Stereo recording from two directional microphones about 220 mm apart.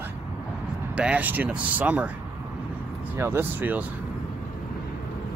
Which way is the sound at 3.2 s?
10° right (ahead or behind).